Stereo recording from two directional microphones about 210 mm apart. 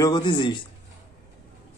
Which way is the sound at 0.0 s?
20° left (ahead or behind).